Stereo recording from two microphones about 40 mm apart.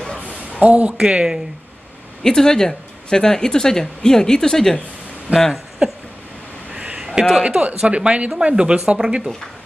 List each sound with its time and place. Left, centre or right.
0.6 s speech: right
2.2 s speech: centre
5.3 s speech: right
5.8 s speech: right
6.7 s a sound: right
7.4 s speech: right